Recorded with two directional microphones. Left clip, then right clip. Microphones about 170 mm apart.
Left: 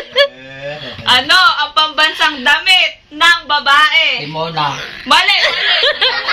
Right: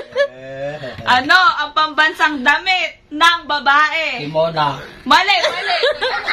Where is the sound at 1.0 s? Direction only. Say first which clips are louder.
Left 2 dB; 60° right (ahead or behind).